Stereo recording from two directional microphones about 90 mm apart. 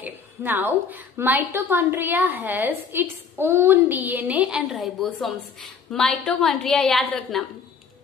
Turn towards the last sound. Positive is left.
turn(degrees=0)  # may be behind; listen again after turning